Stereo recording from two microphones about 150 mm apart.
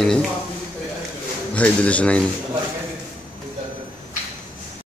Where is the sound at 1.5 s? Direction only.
10° left (ahead or behind).